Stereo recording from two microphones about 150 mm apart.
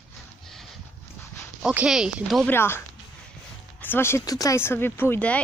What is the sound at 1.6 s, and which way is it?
Speech, 5° right (ahead or behind).